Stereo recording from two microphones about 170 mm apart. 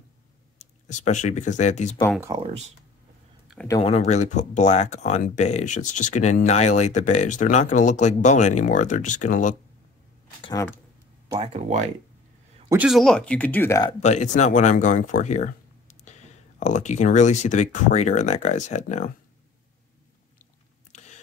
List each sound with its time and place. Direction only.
0.6 s speech: 45° left (ahead or behind)
2.1 s speech: 20° right (ahead or behind)
3.8 s speech: 40° left (ahead or behind)
11.3 s speech: 35° right (ahead or behind)
12.7 s speech: 5° right (ahead or behind); by 13.8 s 15° left (ahead or behind)
14.0 s speech: 45° left (ahead or behind)
20.9 s a sound: 45° left (ahead or behind)